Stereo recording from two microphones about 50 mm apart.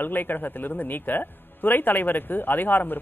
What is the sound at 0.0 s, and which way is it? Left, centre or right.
Speech, left.